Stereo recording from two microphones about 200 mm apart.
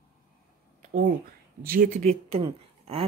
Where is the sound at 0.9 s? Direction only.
45° right (ahead or behind).